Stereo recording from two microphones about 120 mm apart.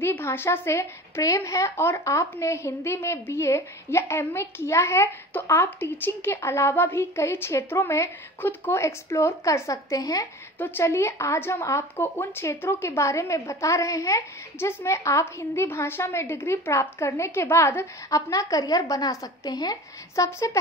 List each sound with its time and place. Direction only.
0.0 s a woman's voice: 20° left (ahead or behind)
10.6 s a woman's voice: 20° left (ahead or behind); by 20.2 s 35° left (ahead or behind)
20.2 s a woman's voice: 25° left (ahead or behind)